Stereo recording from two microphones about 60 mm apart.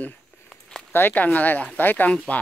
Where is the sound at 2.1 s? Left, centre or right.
Left.